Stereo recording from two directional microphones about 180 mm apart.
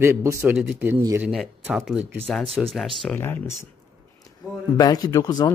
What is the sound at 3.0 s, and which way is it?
Speech, 10° left (ahead or behind).